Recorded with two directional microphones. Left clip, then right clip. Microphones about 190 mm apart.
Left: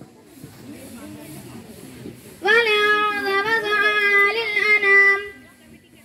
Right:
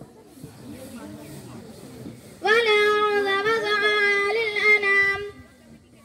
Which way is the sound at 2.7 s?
35° right (ahead or behind).